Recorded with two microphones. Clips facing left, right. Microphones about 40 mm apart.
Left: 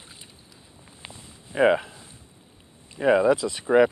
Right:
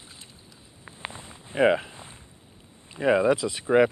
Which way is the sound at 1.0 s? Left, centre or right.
Right.